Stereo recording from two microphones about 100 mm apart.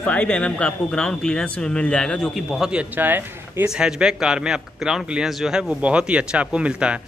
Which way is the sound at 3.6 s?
5° right (ahead or behind).